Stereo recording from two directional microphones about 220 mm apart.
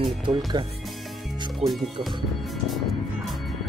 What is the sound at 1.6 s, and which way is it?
Speech, 30° right (ahead or behind).